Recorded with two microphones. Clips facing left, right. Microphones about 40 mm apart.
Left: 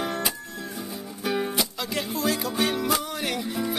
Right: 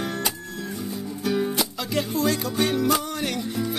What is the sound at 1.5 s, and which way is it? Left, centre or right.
Music, centre.